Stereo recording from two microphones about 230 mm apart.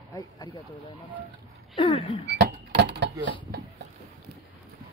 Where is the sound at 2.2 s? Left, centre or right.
Right.